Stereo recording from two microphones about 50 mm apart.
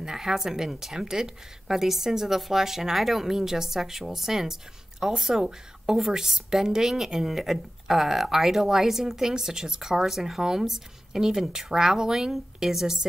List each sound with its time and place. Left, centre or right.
0.0 s a woman's voice: centre